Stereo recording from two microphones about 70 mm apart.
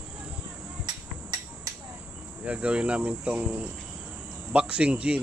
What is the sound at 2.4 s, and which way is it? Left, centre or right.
Speech, centre.